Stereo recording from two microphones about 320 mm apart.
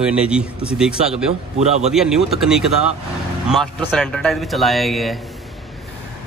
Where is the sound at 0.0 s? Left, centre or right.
Centre.